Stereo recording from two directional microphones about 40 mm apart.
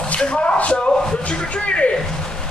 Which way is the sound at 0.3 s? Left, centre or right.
Left.